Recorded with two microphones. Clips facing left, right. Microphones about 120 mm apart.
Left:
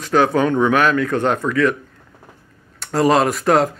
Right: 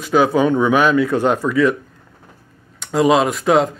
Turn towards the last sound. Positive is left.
turn(degrees=0)  # may be behind; listen again after turning